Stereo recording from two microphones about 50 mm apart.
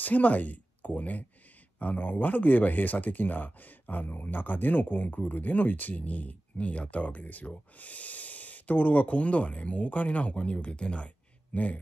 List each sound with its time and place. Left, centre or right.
0.0 s speech: left